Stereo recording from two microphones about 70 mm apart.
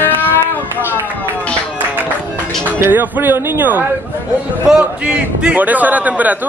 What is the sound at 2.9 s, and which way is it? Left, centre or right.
Speech, right.